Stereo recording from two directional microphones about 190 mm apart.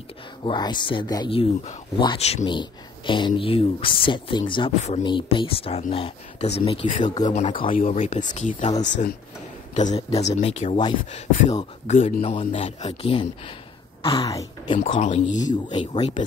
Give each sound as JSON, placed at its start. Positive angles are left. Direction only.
{"t": 0.5, "sound": "a man's voice", "side_deg": 25}
{"t": 9.8, "sound": "a man's voice", "side_deg": 35}
{"t": 14.9, "sound": "a man's voice", "side_deg": 30}